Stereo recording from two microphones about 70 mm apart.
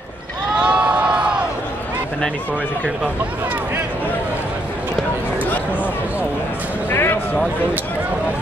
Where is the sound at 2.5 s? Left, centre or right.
Centre.